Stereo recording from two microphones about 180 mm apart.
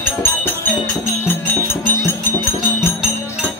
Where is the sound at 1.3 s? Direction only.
10° left (ahead or behind).